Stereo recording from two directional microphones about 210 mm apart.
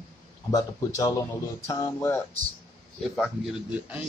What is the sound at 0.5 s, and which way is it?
Speech, 15° left (ahead or behind).